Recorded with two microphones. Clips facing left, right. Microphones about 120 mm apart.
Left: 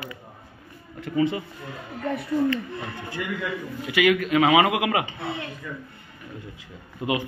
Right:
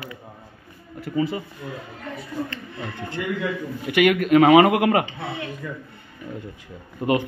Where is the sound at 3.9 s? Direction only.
55° right (ahead or behind).